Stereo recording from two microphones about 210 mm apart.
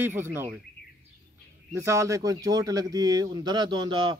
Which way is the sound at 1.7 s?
15° right (ahead or behind).